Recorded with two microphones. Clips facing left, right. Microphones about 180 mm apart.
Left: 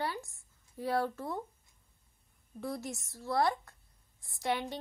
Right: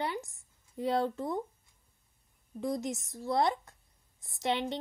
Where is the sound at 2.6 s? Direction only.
20° right (ahead or behind).